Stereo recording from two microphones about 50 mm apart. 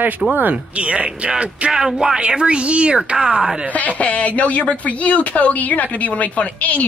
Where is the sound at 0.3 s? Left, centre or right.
Right.